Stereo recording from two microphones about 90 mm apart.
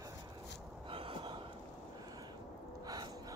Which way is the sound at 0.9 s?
85° right.